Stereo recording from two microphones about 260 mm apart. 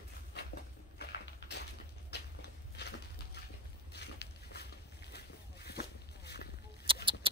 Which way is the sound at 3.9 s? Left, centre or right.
Left.